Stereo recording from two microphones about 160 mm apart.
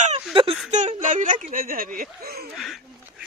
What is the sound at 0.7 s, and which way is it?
Speech, 50° right (ahead or behind).